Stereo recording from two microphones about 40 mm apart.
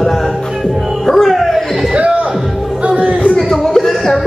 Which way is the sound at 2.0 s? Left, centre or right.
Right.